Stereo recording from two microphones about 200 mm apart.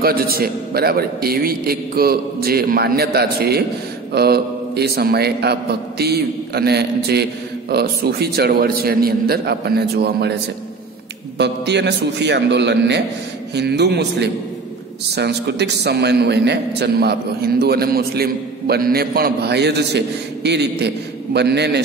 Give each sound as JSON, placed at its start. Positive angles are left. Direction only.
{"t": 0.0, "sound": "a man's voice", "side_deg": -50}
{"t": 11.3, "sound": "a man's voice", "side_deg": -60}